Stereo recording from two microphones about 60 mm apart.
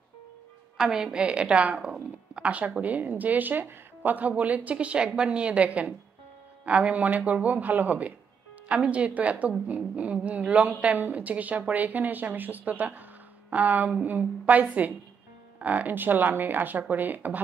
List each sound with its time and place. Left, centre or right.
0.7 s a woman's voice: centre; by 17.4 s right